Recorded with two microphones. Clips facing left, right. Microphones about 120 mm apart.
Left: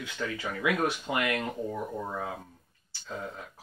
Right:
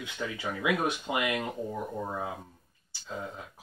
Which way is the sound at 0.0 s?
15° right (ahead or behind).